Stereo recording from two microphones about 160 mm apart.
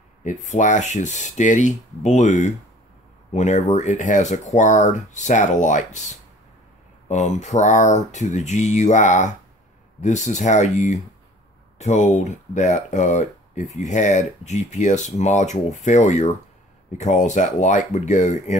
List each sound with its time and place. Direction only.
0.2 s speech: 50° left (ahead or behind)